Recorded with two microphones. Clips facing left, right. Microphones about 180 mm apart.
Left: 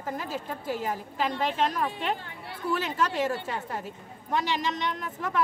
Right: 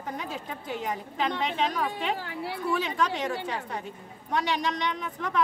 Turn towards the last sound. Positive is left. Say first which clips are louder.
# even
turn(degrees=5)  # may be behind; listen again after turning